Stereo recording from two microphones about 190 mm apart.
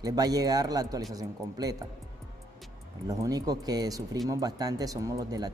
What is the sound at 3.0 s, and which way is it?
Speech, 20° right (ahead or behind).